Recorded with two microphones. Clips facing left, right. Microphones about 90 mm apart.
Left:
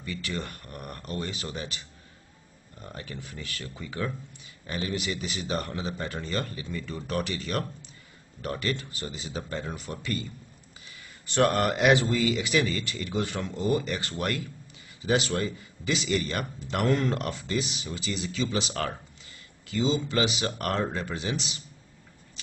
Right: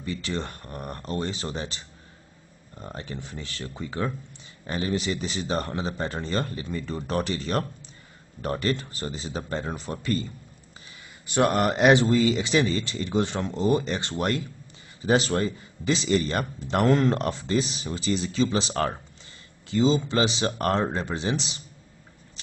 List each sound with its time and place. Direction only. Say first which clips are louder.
0.0 s speech: right 4 dB; 30° right (ahead or behind)
2.8 s a man's voice: right 4 dB; 30° right (ahead or behind)
11.2 s a man's voice: right 2 dB; 15° right (ahead or behind); by 21.5 s 30° right (ahead or behind)